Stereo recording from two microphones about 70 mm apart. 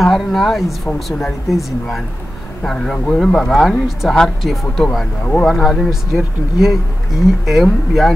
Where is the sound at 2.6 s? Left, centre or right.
Centre.